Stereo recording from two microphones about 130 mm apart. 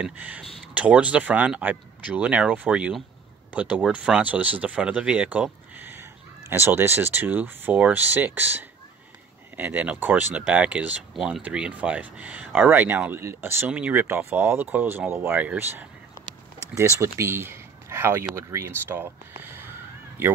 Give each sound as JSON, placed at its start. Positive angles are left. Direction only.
{"t": 0.0, "sound": "speech", "side_deg": -10}